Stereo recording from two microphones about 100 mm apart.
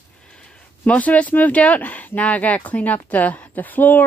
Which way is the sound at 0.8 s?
15° left (ahead or behind).